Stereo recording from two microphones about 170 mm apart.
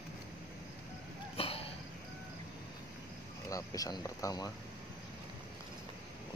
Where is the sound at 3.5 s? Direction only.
20° left (ahead or behind).